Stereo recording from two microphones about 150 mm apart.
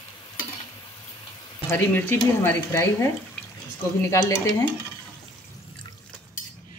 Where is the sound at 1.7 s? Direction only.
15° left (ahead or behind).